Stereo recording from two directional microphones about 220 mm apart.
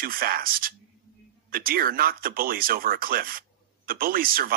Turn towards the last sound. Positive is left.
turn(degrees=-40)  # may be behind; listen again after turning